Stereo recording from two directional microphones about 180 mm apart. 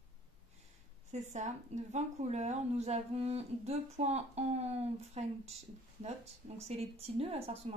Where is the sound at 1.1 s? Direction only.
40° right (ahead or behind).